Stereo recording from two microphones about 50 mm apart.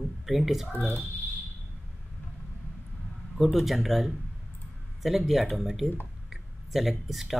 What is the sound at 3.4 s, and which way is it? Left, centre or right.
Speech, centre.